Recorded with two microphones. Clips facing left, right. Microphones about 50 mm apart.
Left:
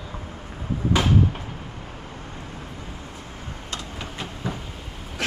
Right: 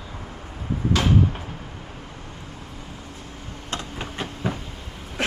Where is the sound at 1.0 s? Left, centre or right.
Centre.